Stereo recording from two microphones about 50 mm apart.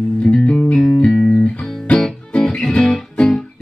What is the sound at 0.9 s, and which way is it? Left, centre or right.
Music, left.